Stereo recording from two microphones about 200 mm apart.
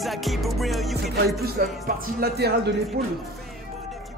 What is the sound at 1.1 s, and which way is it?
A man's voice, 50° right (ahead or behind).